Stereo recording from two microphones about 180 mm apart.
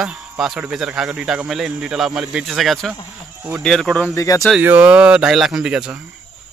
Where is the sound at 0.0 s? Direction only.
Centre (ahead or behind).